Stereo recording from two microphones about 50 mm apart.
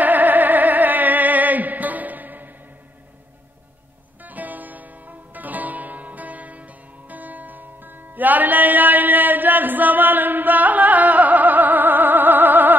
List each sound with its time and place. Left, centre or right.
0.0 s music: right
4.2 s music: right